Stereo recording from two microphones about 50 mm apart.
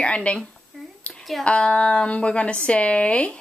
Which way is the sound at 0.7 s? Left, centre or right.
Centre.